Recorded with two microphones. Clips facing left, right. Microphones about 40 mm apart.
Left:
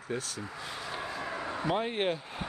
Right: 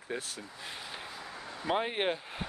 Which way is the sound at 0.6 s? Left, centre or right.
Centre.